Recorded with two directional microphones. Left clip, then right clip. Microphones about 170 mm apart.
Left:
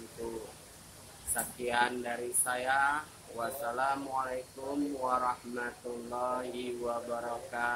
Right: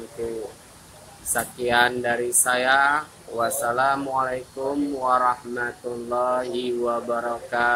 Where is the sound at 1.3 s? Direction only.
20° right (ahead or behind).